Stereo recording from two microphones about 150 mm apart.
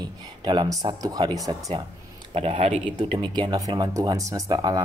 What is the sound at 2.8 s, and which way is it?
Speech, 35° right (ahead or behind).